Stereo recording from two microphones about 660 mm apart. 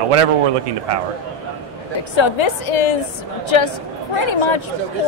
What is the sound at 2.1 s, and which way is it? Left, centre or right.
Speech, left.